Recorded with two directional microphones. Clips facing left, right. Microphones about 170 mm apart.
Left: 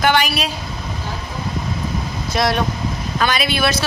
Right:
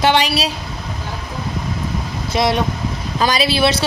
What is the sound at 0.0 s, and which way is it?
Speech, 25° right (ahead or behind).